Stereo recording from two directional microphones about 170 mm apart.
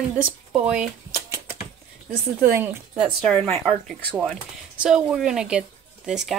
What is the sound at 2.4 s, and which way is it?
Speech, 15° right (ahead or behind).